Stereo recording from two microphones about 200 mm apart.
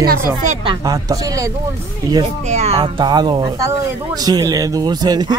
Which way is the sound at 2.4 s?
35° right (ahead or behind).